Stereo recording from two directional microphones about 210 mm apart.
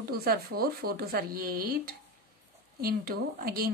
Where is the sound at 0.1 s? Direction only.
45° right (ahead or behind).